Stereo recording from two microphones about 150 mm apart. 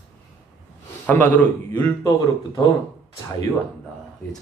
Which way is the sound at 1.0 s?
10° left (ahead or behind).